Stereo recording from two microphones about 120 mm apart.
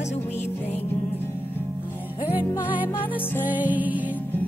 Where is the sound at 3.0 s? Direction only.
45° left (ahead or behind).